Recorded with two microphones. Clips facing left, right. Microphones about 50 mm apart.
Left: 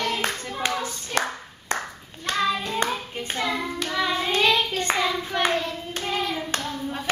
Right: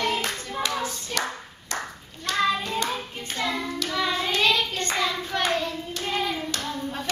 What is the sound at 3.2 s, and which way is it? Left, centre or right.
Hands, left.